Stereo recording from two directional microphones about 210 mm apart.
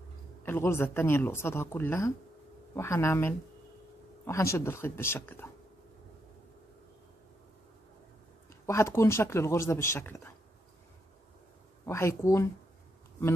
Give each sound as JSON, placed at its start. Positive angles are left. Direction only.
{"t": 0.5, "sound": "speech", "side_deg": 10}
{"t": 8.6, "sound": "speech", "side_deg": 15}
{"t": 11.8, "sound": "speech", "side_deg": 15}